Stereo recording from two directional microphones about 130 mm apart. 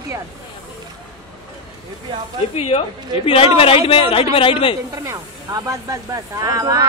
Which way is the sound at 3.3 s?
45° left (ahead or behind).